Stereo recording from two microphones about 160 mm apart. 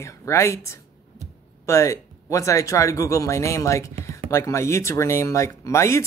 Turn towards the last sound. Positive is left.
turn(degrees=20)  # may be behind; listen again after turning